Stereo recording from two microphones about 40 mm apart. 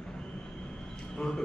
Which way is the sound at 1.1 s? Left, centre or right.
Centre.